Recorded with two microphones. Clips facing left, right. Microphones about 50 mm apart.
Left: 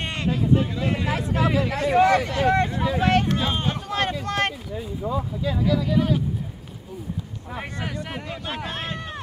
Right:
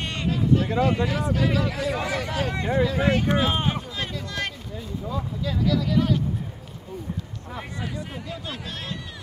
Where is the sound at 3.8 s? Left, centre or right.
Left.